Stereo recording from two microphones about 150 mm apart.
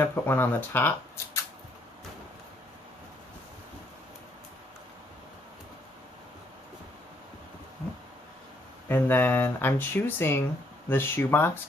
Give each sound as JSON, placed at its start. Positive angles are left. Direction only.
{"t": 0.0, "sound": "speech", "side_deg": 15}
{"t": 8.8, "sound": "speech", "side_deg": 15}